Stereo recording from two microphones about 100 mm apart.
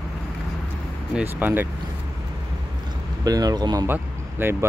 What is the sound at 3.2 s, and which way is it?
Speech, 40° right (ahead or behind).